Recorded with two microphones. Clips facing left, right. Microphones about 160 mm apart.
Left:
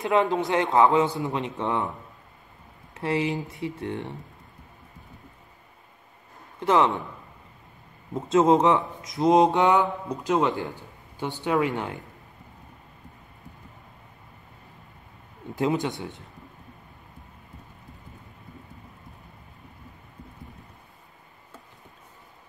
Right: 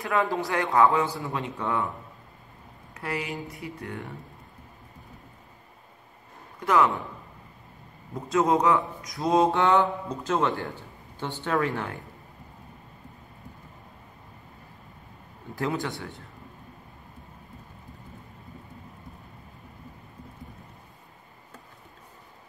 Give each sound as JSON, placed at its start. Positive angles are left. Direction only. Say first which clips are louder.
{"t": 0.0, "sound": "speech", "louder": "left 4 dB", "side_deg": 20}
{"t": 2.9, "sound": "speech", "louder": "left 7 dB", "side_deg": 25}
{"t": 6.6, "sound": "speech", "louder": "left 1 dB", "side_deg": 25}
{"t": 8.1, "sound": "speech", "louder": "left 4 dB", "side_deg": 25}
{"t": 15.5, "sound": "speech", "louder": "left 4 dB", "side_deg": 20}